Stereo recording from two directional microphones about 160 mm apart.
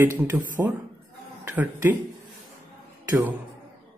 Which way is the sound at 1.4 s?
10° right (ahead or behind).